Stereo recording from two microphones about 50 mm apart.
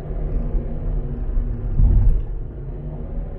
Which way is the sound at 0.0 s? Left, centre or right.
Centre.